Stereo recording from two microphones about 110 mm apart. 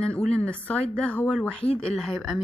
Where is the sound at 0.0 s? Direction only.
10° left (ahead or behind).